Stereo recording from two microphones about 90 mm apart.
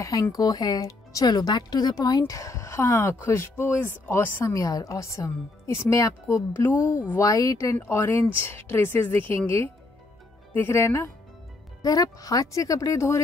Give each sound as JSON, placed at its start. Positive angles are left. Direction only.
{"t": 0.2, "sound": "speech", "side_deg": 45}
{"t": 4.6, "sound": "speech", "side_deg": 40}
{"t": 6.5, "sound": "speech", "side_deg": 25}
{"t": 7.2, "sound": "speech", "side_deg": 40}
{"t": 7.7, "sound": "speech", "side_deg": 25}
{"t": 10.5, "sound": "speech", "side_deg": 25}
{"t": 11.8, "sound": "speech", "side_deg": 40}